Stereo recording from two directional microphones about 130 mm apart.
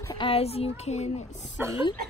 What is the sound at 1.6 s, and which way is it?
Speech, 15° right (ahead or behind).